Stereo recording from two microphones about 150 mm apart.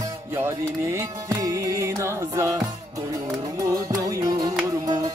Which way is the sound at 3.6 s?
20° right (ahead or behind).